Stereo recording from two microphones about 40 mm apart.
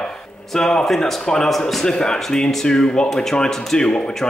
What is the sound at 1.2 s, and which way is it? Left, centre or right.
Speech, centre.